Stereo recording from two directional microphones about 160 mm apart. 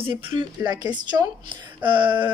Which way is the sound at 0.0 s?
30° right (ahead or behind).